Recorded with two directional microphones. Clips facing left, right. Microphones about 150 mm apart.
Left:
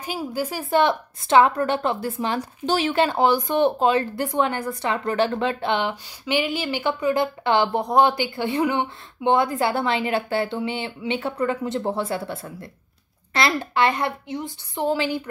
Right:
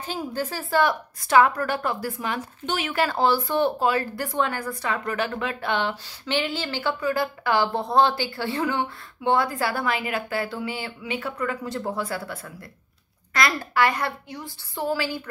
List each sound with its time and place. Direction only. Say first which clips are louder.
0.0 s a woman's voice: left 2 dB; 10° left (ahead or behind)